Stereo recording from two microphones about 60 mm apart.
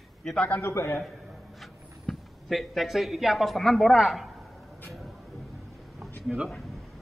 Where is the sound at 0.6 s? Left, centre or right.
Left.